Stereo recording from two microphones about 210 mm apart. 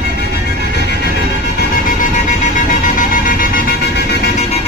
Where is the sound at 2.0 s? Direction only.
40° left (ahead or behind).